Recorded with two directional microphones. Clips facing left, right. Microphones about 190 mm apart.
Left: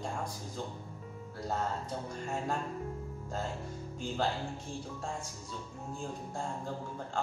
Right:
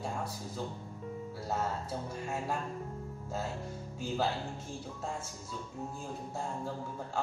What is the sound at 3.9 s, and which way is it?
Speech, 5° right (ahead or behind).